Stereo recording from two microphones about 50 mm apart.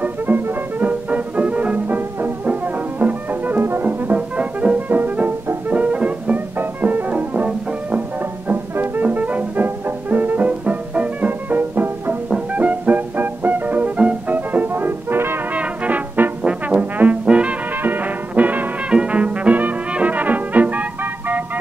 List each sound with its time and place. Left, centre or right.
0.0 s music: right
2.0 s music: right
3.6 s music: right
4.1 s music: right
8.5 s music: right
9.0 s music: right
15.5 s brass instrument: right
17.8 s music: right
18.9 s music: right